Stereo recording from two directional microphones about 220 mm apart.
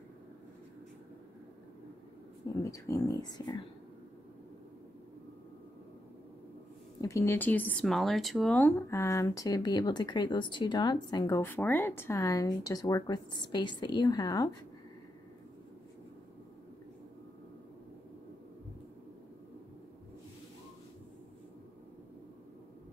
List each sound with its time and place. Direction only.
2.6 s speech: 15° left (ahead or behind)
7.0 s speech: 15° left (ahead or behind)